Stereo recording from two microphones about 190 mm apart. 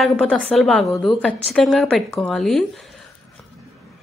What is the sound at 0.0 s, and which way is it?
A woman's voice, 5° left (ahead or behind).